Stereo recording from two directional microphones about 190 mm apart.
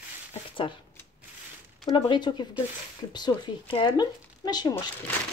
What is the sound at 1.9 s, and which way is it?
Speech, 25° left (ahead or behind).